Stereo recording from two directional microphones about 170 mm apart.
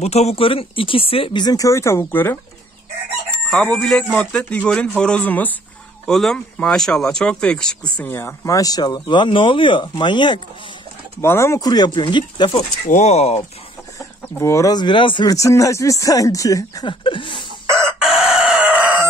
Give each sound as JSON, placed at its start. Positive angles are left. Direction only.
{"t": 0.0, "sound": "speech", "side_deg": 40}
{"t": 11.1, "sound": "speech", "side_deg": 15}
{"t": 12.5, "sound": "speech", "side_deg": 40}
{"t": 13.9, "sound": "speech", "side_deg": 20}
{"t": 17.6, "sound": "chicken", "side_deg": -15}
{"t": 17.9, "sound": "chicken", "side_deg": -5}